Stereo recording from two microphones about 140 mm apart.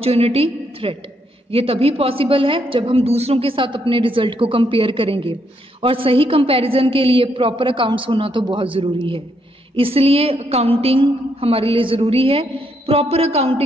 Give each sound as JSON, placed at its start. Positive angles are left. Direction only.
{"t": 0.0, "sound": "a woman's voice", "side_deg": -45}